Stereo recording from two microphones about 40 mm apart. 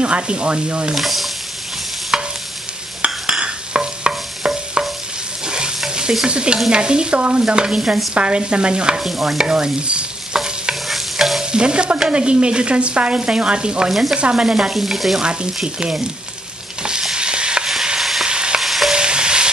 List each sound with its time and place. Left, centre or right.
0.0 s stir: right
0.9 s frying: centre
2.1 s stir: centre
3.3 s stir: right
9.0 s frying: centre
9.4 s stir: right
10.9 s stir: centre
11.5 s stir: right
13.8 s frying: centre
14.1 s stir: right
14.7 s frying: centre
15.2 s stir: centre
18.6 s stir: centre
18.9 s stir: right